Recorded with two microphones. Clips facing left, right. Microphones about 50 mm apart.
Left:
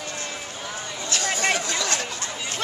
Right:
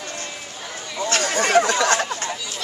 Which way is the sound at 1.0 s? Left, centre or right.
Right.